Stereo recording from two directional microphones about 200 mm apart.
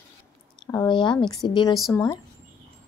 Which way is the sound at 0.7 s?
20° left (ahead or behind).